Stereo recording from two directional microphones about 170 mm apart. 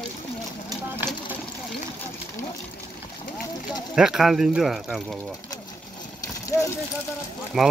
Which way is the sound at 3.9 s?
5° right (ahead or behind).